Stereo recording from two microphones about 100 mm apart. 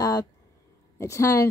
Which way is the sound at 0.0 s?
35° left (ahead or behind).